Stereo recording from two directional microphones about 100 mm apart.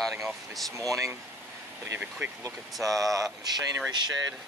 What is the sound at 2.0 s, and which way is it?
Speech, 10° right (ahead or behind).